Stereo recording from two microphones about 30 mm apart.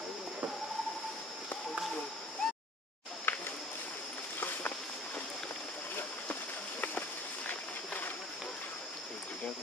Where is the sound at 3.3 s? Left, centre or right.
Left.